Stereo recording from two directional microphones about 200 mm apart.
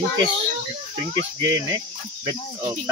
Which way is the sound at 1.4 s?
20° right (ahead or behind).